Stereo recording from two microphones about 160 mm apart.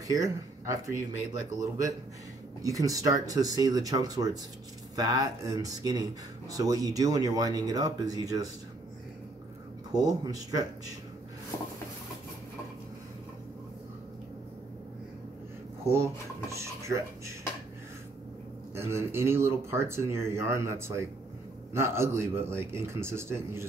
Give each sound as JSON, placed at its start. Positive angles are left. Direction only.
{"t": 0.1, "sound": "speech", "side_deg": -20}
{"t": 9.9, "sound": "speech", "side_deg": -25}
{"t": 15.8, "sound": "speech", "side_deg": -15}
{"t": 18.9, "sound": "speech", "side_deg": -15}